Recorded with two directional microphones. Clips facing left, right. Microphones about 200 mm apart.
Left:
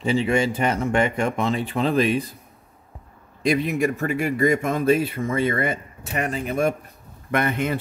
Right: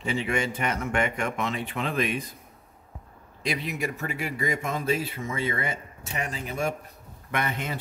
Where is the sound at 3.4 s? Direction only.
50° left (ahead or behind).